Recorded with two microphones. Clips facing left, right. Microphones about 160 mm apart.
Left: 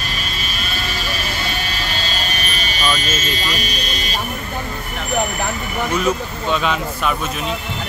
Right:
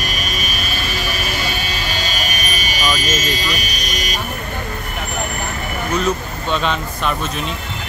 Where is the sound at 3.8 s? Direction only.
30° left (ahead or behind).